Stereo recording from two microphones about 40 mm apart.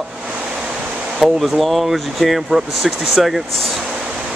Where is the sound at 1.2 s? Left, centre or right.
Centre.